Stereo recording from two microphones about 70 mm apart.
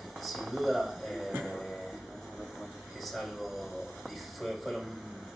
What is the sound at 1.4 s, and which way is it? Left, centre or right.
Music, centre.